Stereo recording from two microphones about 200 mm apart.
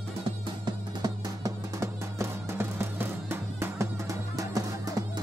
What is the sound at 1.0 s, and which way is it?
Music, 15° right (ahead or behind).